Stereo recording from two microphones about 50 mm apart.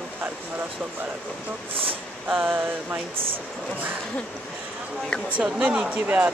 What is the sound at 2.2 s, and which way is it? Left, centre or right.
Speech, right.